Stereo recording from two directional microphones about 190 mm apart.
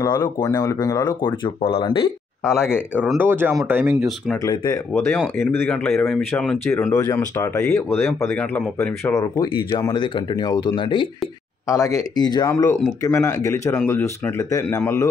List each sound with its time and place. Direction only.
0.0 s speech: 20° left (ahead or behind)
3.0 s speech: 10° right (ahead or behind)
4.4 s speech: 15° left (ahead or behind)